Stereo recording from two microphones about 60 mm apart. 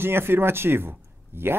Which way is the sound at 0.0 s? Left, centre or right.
Right.